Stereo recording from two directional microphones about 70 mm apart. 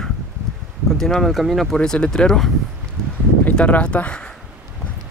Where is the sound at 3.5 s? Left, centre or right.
Centre.